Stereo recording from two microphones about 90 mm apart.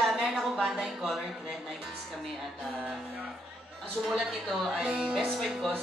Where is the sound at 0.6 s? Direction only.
Centre (ahead or behind).